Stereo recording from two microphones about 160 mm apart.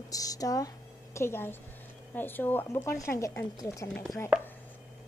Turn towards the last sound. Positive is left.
turn(degrees=5)  # may be behind; listen again after turning